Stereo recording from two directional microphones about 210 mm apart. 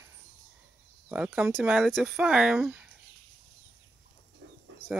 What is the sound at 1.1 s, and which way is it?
Speech, 5° right (ahead or behind).